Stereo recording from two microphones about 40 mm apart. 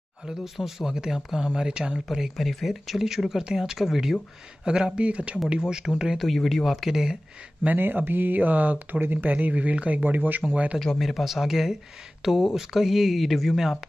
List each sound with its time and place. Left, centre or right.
0.2 s speech: centre
2.3 s speech: centre
4.6 s speech: centre
5.0 s speech: right
5.7 s speech: centre
6.1 s speech: centre
6.7 s speech: centre
7.8 s speech: right
10.0 s speech: right
10.5 s speech: right
11.0 s speech: centre